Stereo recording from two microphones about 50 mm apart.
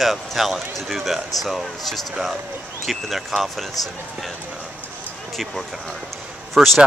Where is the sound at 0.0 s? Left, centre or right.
Centre.